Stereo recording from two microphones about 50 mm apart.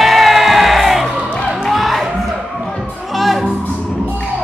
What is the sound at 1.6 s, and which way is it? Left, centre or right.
Music, centre.